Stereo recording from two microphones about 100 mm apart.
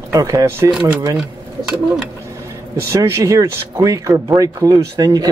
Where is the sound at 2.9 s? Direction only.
30° right (ahead or behind).